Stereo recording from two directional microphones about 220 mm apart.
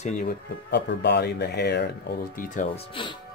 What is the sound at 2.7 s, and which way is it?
Speech, 25° left (ahead or behind).